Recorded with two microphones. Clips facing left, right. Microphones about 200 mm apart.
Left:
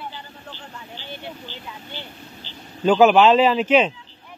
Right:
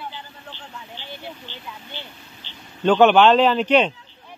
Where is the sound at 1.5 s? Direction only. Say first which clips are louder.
Left 1 dB; 40° left (ahead or behind).